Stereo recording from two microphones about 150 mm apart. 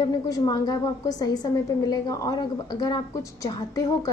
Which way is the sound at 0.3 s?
25° left (ahead or behind).